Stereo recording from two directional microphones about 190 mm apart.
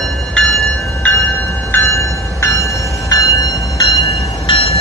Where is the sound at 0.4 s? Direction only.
5° left (ahead or behind).